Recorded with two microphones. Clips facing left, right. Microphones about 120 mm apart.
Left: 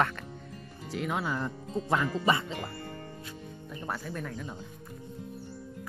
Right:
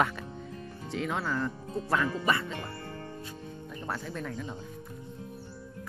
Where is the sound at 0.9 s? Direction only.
5° left (ahead or behind).